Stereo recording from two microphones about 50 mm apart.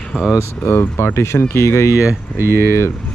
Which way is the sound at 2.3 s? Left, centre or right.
Right.